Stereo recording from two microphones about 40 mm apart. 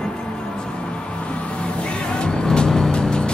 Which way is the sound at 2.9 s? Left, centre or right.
Left.